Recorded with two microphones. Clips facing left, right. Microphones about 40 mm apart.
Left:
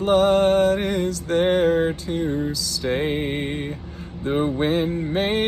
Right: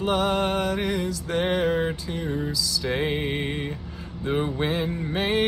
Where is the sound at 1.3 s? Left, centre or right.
Right.